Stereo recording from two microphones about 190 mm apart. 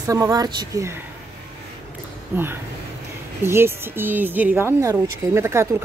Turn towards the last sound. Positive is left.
turn(degrees=-15)  # may be behind; listen again after turning